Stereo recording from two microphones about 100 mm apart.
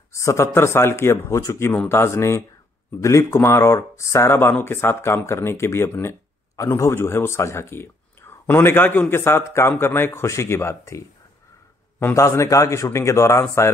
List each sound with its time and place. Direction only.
0.1 s a man's voice: 30° left (ahead or behind)